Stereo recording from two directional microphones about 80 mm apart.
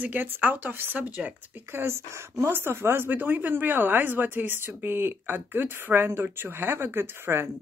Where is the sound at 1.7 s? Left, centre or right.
Right.